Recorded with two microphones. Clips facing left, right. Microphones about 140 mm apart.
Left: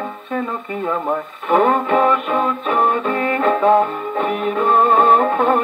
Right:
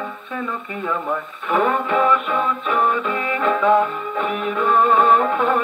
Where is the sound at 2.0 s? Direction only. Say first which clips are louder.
Left 2 dB; 40° left (ahead or behind).